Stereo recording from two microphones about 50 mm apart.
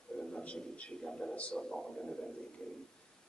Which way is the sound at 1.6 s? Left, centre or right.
Centre.